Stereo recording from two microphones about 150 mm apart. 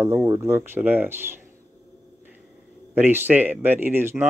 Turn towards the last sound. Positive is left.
turn(degrees=-15)  # may be behind; listen again after turning